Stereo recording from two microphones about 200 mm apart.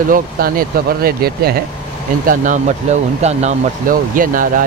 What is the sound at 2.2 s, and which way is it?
Speech, 40° right (ahead or behind).